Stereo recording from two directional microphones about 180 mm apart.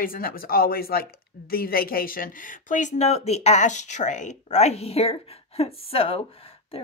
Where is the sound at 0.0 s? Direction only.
55° left (ahead or behind).